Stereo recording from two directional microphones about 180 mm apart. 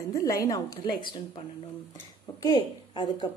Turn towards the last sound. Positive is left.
turn(degrees=25)  # may be behind; listen again after turning